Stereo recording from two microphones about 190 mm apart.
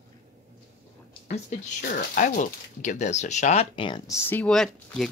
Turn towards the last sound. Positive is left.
turn(degrees=0)  # may be behind; listen again after turning